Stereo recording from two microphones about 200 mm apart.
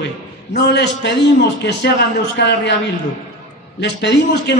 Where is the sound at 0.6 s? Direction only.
60° left (ahead or behind).